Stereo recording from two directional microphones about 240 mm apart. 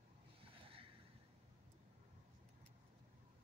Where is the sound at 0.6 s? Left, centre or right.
Right.